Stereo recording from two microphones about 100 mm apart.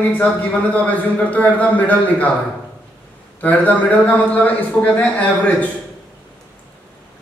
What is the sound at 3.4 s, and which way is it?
Speech, 15° left (ahead or behind).